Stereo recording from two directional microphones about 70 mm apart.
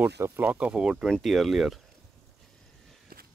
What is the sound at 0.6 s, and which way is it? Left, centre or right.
Speech, centre.